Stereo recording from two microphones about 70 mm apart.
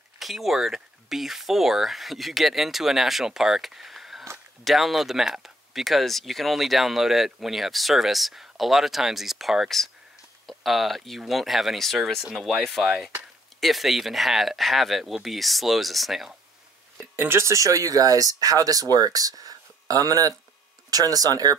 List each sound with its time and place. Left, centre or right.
0.2 s speech: centre
17.1 s speech: right